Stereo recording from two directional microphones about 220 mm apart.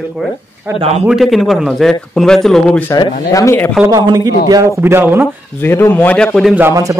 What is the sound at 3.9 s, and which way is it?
A man's voice, 15° right (ahead or behind).